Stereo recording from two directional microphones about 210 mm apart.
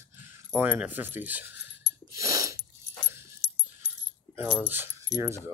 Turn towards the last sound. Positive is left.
turn(degrees=-15)  # may be behind; listen again after turning